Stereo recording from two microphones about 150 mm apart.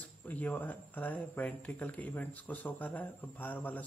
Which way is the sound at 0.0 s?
10° left (ahead or behind).